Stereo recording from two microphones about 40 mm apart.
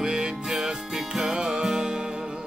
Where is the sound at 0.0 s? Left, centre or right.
Centre.